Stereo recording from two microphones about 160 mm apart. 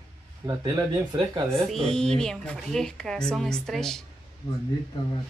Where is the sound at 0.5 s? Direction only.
25° right (ahead or behind).